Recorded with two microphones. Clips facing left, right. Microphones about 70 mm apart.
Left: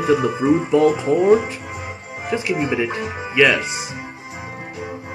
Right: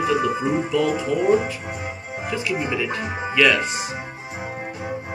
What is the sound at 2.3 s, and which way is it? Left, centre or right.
Music, left.